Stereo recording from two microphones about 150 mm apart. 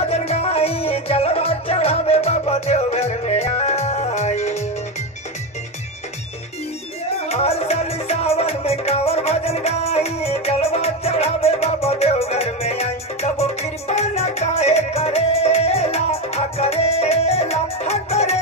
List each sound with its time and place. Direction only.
0.1 s music: 45° left (ahead or behind)
7.2 s music: 40° left (ahead or behind)